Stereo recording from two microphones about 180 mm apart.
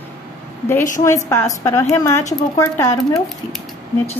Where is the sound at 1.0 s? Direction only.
15° left (ahead or behind).